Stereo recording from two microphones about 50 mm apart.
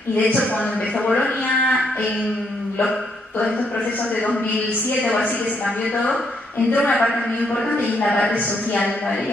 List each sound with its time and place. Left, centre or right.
0.2 s a man's voice: left
5.0 s a man's voice: left
6.7 s a man's voice: left